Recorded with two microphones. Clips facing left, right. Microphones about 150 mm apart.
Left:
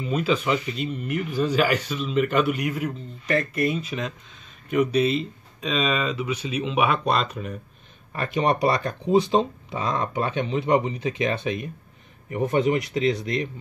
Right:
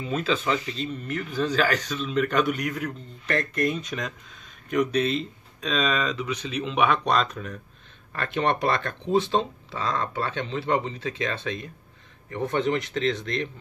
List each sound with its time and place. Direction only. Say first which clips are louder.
0.0 s speech: left 2 dB; 10° left (ahead or behind)